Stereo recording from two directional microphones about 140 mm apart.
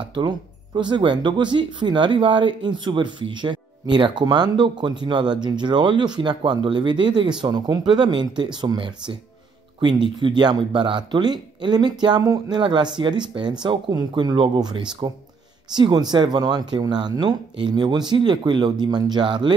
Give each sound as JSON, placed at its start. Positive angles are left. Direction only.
{"t": 0.1, "sound": "speech", "side_deg": -35}